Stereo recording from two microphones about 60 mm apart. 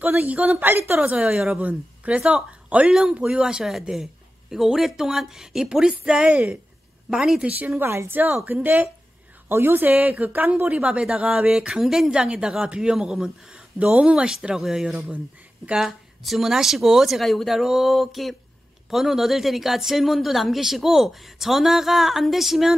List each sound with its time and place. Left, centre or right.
0.2 s a woman's voice: right
7.4 s a woman's voice: right
7.8 s a woman's voice: right
8.5 s a woman's voice: right
9.5 s a woman's voice: right
10.9 s speech: centre
11.5 s speech: centre
12.1 s speech: centre
15.8 s speech: centre